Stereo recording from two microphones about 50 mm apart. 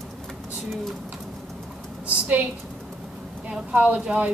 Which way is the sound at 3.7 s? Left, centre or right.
Right.